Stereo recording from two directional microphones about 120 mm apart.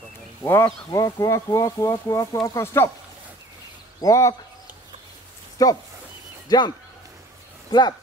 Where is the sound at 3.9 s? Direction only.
25° left (ahead or behind).